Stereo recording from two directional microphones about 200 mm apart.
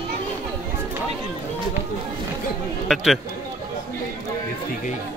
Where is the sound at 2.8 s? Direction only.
Centre (ahead or behind).